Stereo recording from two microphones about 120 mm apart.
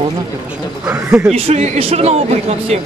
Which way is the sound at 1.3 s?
60° right (ahead or behind).